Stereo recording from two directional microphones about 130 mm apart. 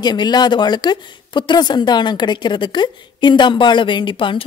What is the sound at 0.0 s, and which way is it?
A woman's voice, 35° left (ahead or behind).